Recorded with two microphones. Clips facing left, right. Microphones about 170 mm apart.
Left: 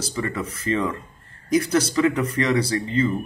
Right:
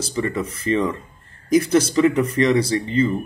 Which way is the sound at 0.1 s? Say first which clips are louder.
Right 5 dB; centre (ahead or behind).